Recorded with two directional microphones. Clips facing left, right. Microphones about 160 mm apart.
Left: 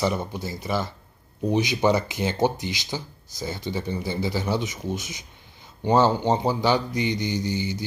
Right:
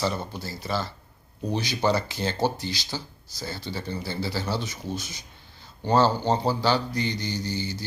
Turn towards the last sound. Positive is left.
turn(degrees=20)  # may be behind; listen again after turning